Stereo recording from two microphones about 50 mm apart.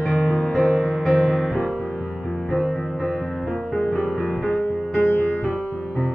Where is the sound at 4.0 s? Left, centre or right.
Left.